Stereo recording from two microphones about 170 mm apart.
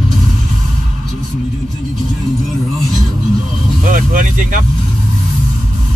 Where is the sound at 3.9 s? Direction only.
50° right (ahead or behind).